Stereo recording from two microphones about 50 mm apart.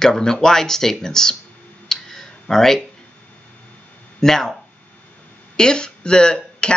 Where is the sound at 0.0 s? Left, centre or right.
Centre.